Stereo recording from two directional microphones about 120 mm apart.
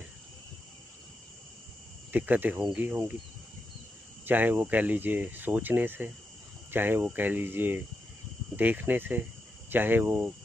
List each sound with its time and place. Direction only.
2.1 s speech: 15° right (ahead or behind)
4.3 s speech: 15° right (ahead or behind)